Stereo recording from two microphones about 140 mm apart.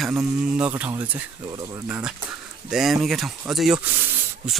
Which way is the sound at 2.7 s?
Centre (ahead or behind).